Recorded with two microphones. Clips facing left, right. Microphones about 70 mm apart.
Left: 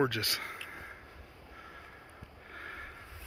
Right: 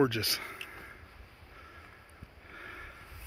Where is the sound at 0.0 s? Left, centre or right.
Left.